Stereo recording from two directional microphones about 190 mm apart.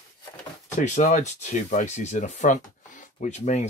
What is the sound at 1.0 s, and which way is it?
Speech, 40° left (ahead or behind).